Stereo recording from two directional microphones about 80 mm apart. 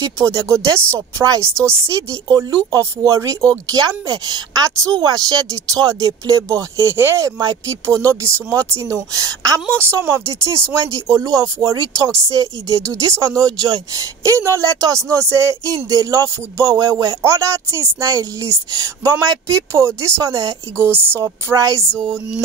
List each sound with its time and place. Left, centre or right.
0.2 s speech: right
1.4 s a woman's voice: right
2.2 s speech: right
7.2 s speech: right
8.0 s speech: right
9.7 s a woman's voice: right
9.9 s speech: right
17.2 s a woman's voice: right
21.2 s speech: right